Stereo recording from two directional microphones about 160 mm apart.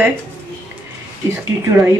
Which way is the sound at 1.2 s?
15° right (ahead or behind).